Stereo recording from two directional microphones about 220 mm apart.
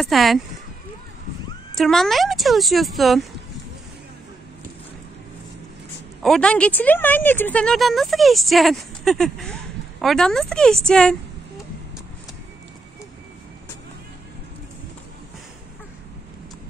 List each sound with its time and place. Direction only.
0.0 s speech: centre (ahead or behind)
1.8 s speech: centre (ahead or behind)
6.2 s speech: 5° left (ahead or behind)